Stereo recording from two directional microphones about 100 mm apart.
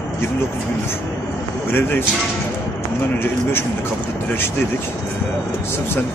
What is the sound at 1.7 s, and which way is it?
Speech, 20° left (ahead or behind).